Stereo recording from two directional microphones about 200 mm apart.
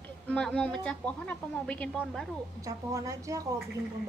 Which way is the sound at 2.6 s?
15° right (ahead or behind).